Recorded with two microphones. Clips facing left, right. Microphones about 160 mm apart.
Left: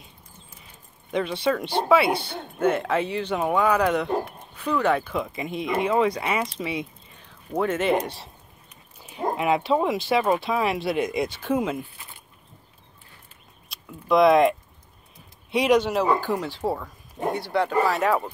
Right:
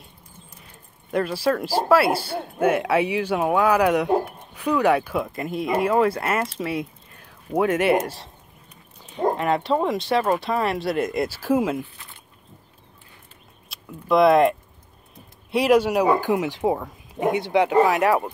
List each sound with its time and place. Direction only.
1.1 s speech: 5° right (ahead or behind)
13.7 s speech: centre (ahead or behind)
15.5 s speech: 5° right (ahead or behind)